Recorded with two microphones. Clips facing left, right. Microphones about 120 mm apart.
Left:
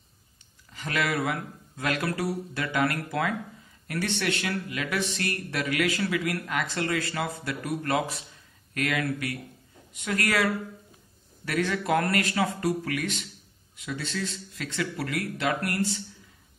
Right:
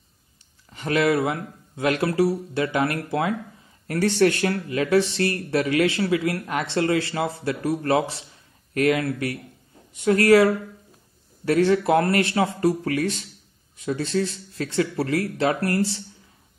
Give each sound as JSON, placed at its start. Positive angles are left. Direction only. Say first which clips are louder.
{"t": 0.7, "sound": "speech", "louder": "right 8 dB", "side_deg": -30}